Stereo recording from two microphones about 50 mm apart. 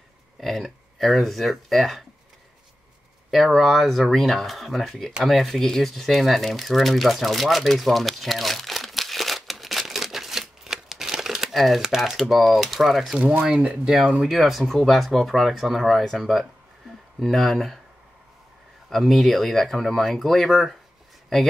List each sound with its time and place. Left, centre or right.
0.4 s speech: centre
3.3 s speech: centre
5.2 s crumpling: centre
11.8 s speech: centre
12.2 s speech: centre
13.2 s speech: right
14.2 s speech: centre
18.9 s speech: centre